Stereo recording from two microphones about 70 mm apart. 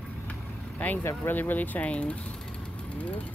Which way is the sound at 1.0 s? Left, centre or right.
Left.